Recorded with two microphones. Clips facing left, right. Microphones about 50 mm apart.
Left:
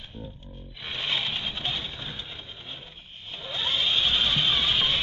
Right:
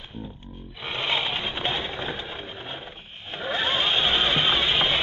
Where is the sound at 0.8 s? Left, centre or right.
Right.